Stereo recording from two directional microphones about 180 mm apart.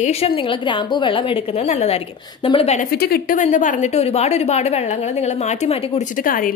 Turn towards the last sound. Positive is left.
turn(degrees=50)  # may be behind; listen again after turning